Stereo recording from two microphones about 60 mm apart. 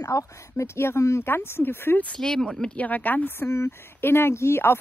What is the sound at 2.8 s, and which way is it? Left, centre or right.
Speech, left.